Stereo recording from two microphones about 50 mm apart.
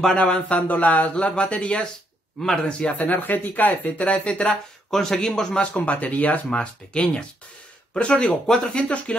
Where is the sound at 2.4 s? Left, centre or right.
Centre.